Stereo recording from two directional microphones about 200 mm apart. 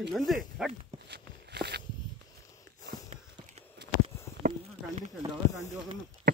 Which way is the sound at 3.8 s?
60° right (ahead or behind).